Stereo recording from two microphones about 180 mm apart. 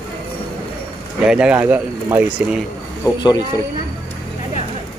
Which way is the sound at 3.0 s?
20° left (ahead or behind).